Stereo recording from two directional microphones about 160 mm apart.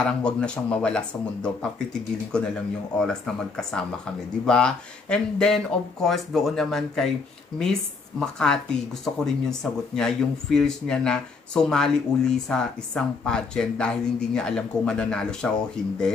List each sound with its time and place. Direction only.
0.0 s speech: 5° left (ahead or behind)
3.0 s speech: 5° left (ahead or behind)
8.2 s speech: 5° left (ahead or behind)